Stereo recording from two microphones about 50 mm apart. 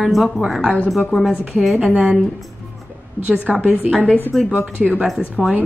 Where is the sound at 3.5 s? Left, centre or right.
Centre.